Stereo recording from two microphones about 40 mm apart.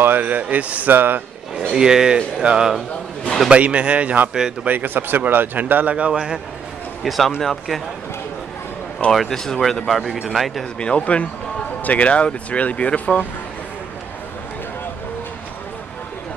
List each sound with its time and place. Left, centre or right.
0.0 s speech: right
0.8 s speech: right
1.7 s speech: centre
3.4 s a man's voice: right
4.3 s speech: centre
4.6 s speech: right
6.1 s speech: centre
7.1 s speech: centre
9.1 s speech: centre
10.8 s speech: left